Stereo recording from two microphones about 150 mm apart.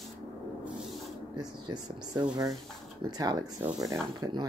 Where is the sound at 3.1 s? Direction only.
25° right (ahead or behind).